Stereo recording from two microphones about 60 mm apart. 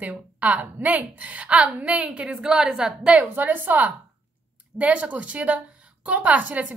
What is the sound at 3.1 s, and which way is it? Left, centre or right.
A woman's voice, right.